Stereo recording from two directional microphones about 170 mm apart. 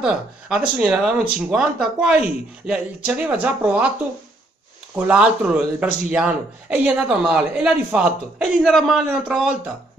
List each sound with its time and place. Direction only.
0.0 s speech: 5° right (ahead or behind)
4.9 s a man's voice: 10° right (ahead or behind)